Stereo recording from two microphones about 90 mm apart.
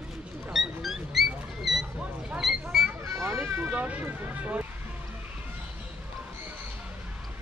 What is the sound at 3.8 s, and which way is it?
Speech, 15° right (ahead or behind).